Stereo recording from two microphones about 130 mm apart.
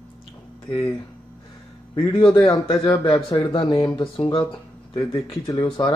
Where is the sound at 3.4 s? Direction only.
45° left (ahead or behind).